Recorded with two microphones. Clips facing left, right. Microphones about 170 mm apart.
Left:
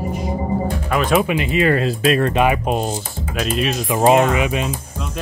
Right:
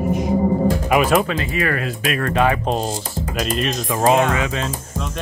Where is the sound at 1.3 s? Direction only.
20° left (ahead or behind).